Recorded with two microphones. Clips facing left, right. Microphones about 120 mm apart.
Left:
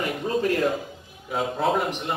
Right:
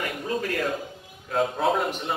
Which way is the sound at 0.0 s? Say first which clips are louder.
Left 4 dB; 20° left (ahead or behind).